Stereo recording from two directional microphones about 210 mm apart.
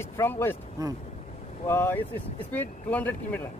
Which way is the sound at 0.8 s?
15° right (ahead or behind).